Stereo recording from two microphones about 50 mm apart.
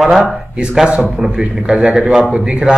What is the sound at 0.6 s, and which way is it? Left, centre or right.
A man's voice, right.